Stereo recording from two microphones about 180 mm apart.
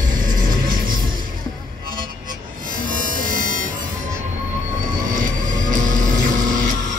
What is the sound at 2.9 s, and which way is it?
Music, 50° right (ahead or behind).